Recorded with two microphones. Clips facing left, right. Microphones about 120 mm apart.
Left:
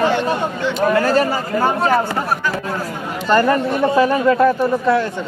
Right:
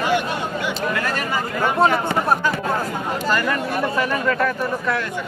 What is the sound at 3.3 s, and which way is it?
Speech, 35° left (ahead or behind).